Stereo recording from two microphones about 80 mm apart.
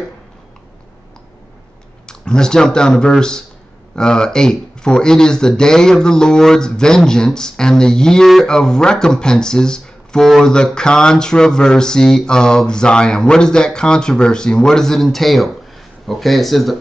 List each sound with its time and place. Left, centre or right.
2.0 s speech: centre